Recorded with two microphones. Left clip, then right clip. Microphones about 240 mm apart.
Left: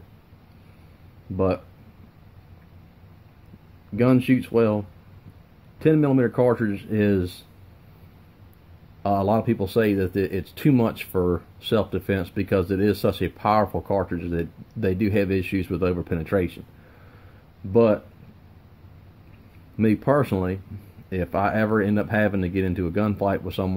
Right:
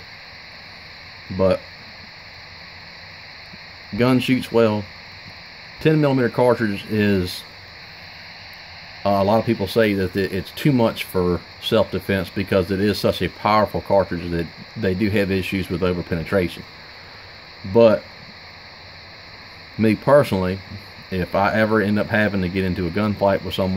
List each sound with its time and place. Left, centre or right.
4.0 s speech: right
5.8 s speech: right
9.0 s speech: right
19.8 s speech: right